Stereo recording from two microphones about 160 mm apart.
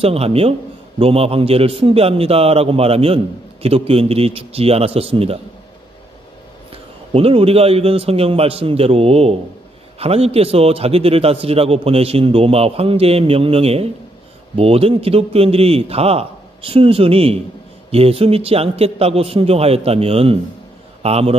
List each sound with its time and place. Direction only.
0.0 s a man's voice: 40° right (ahead or behind)
6.7 s a man's voice: 35° right (ahead or behind)